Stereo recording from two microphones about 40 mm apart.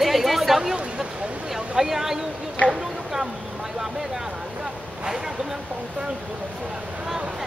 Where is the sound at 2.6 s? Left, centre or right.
Centre.